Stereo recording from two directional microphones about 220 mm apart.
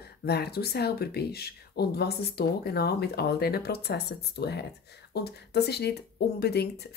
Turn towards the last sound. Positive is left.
turn(degrees=45)  # may be behind; listen again after turning